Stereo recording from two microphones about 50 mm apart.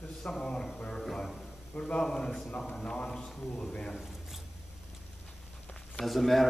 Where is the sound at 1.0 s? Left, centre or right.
Centre.